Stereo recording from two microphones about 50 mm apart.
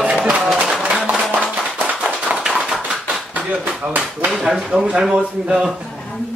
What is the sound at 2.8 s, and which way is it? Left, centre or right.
Bouncing, right.